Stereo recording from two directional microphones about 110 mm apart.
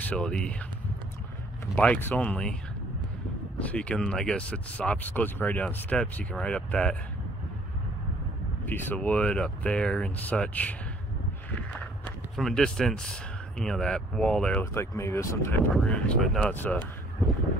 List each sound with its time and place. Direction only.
0.0 s speech: 10° left (ahead or behind)
1.8 s speech: 15° left (ahead or behind)
3.5 s speech: 10° left (ahead or behind)
8.6 s speech: 15° left (ahead or behind)
12.4 s speech: 5° left (ahead or behind)
14.6 s speech: 25° left (ahead or behind)
15.7 s speech: 10° left (ahead or behind)